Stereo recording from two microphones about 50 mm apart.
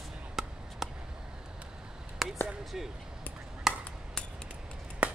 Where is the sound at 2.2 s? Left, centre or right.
Centre.